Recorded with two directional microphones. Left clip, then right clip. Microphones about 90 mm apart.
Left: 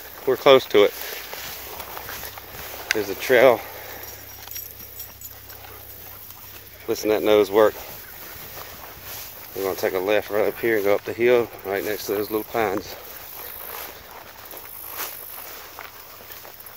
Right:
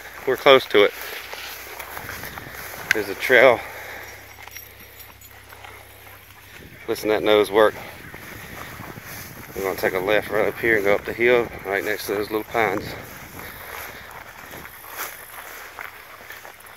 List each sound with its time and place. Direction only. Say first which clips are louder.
0.2 s speech: even; 10° left (ahead or behind)
2.6 s a sound: left 2 dB; 15° right (ahead or behind)
2.9 s speech: right 2 dB; 15° left (ahead or behind)
6.9 s speech: even; 5° left (ahead or behind)
9.6 s speech: right 1 dB; 5° left (ahead or behind)
13.7 s boat: right 1 dB; 5° left (ahead or behind)